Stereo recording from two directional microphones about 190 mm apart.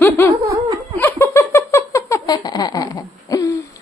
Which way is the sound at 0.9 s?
15° left (ahead or behind).